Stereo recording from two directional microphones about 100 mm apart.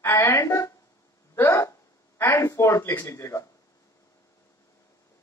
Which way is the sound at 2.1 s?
25° left (ahead or behind).